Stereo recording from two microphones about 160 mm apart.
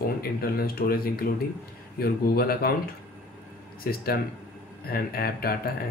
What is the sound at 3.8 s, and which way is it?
Speech, 70° left (ahead or behind).